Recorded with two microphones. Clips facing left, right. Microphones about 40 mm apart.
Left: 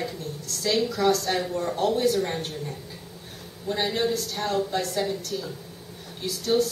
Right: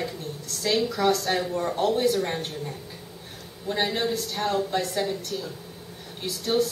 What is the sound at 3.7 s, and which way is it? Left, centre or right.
Speech, centre.